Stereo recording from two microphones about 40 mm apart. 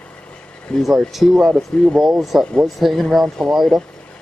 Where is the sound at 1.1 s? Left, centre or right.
Centre.